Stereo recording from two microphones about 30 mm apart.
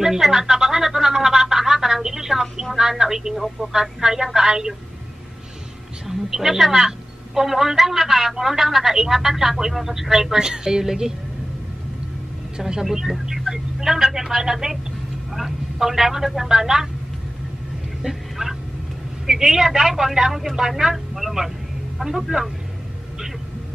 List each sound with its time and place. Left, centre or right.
0.0 s a sound: centre
2.9 s a woman's voice: centre
6.0 s a woman's voice: centre
10.4 s speech: right
12.5 s a woman's voice: right
18.0 s a sound: centre
19.2 s a woman's voice: centre
20.9 s a woman's voice: centre